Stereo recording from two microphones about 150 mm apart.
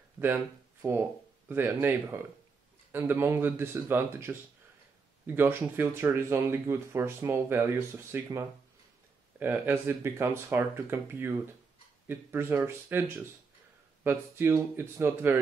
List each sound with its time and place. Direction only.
0.8 s speech: 15° right (ahead or behind)
14.0 s speech: 15° right (ahead or behind)